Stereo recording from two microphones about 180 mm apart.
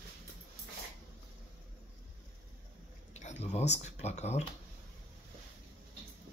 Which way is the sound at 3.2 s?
40° left (ahead or behind).